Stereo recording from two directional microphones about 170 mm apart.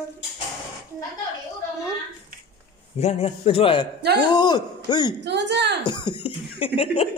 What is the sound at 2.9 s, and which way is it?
A man's voice, 40° left (ahead or behind).